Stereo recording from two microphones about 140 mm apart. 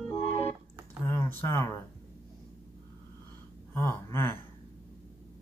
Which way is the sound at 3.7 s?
20° left (ahead or behind).